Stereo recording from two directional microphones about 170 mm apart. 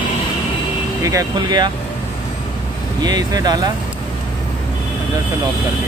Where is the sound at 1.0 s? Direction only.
20° right (ahead or behind).